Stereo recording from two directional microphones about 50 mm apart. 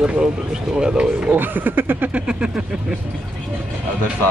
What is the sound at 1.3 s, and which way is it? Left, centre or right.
Speech, right.